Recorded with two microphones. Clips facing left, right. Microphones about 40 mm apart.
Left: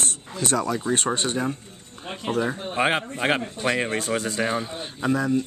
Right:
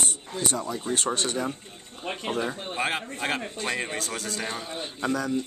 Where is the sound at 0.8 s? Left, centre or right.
Left.